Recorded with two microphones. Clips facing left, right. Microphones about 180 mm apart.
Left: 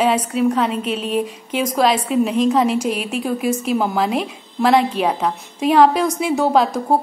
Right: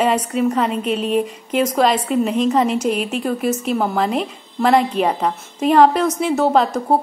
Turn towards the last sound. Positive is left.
turn(degrees=5)  # may be behind; listen again after turning